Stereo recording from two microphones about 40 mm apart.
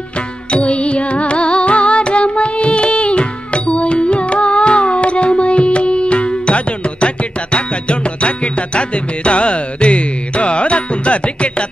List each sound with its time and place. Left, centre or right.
0.5 s music: left